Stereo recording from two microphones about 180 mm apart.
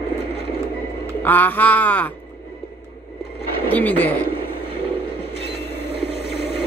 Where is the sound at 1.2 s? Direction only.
10° left (ahead or behind).